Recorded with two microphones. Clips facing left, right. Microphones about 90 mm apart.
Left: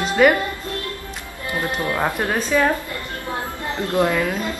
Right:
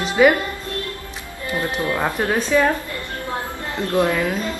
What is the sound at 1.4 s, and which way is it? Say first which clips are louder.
Speech: right 1 dB; 20° left (ahead or behind).